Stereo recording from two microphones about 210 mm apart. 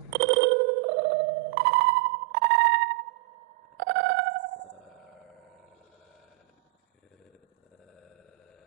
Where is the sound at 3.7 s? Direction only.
55° right (ahead or behind).